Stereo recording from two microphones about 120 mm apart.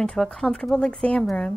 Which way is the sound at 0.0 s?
5° left (ahead or behind).